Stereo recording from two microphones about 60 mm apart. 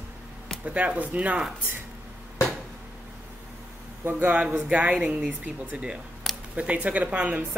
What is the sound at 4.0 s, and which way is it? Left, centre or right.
Speech, right.